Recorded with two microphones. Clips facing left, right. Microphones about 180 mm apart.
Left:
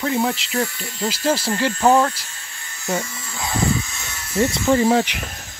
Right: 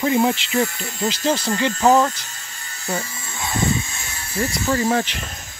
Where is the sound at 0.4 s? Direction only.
Centre (ahead or behind).